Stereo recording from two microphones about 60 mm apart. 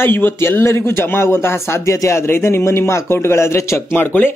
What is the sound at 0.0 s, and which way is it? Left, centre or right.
A man's voice, left.